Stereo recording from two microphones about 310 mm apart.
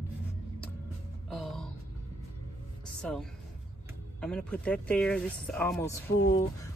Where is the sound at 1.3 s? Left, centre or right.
Centre.